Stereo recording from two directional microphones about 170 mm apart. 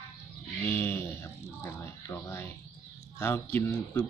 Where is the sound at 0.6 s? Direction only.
15° left (ahead or behind).